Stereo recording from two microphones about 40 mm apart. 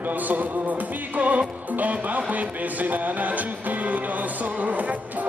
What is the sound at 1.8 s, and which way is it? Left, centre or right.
Speech, right.